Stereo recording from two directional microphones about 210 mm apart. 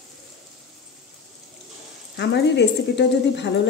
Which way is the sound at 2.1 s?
55° left (ahead or behind).